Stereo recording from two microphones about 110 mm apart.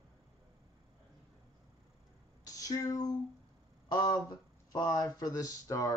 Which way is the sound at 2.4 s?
35° left (ahead or behind).